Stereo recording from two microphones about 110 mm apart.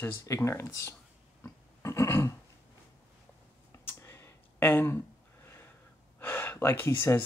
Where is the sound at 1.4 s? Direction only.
25° left (ahead or behind).